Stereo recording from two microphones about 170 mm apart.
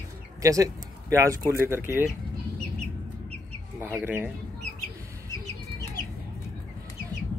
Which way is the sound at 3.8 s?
10° right (ahead or behind).